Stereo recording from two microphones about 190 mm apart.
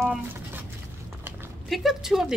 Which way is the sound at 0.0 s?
10° right (ahead or behind).